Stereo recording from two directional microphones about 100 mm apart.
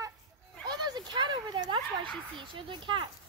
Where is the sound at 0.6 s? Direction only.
45° right (ahead or behind).